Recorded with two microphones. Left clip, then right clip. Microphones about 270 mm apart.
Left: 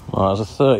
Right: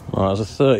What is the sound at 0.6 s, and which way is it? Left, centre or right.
Speech, centre.